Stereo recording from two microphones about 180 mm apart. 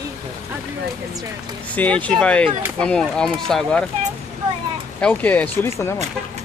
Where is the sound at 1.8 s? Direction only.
5° left (ahead or behind).